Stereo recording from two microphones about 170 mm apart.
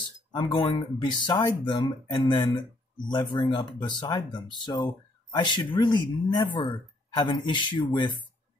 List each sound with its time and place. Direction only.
0.3 s speech: 25° left (ahead or behind)